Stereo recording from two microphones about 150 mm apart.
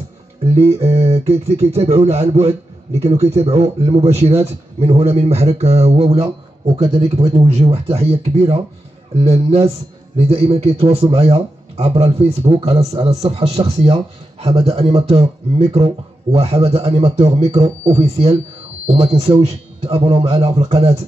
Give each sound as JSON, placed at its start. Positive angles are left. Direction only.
{"t": 0.6, "sound": "speech", "side_deg": -45}
{"t": 7.3, "sound": "a man's voice", "side_deg": -45}